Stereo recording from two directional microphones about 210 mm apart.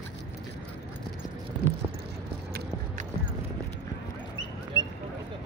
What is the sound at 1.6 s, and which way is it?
Vehicle, 50° right (ahead or behind).